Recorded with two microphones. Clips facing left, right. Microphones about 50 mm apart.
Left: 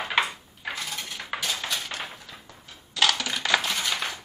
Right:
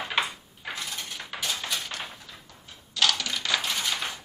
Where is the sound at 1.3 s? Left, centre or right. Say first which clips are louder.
Left 4 dB; left.